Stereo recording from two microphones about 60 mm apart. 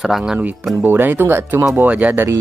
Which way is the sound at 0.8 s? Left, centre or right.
Right.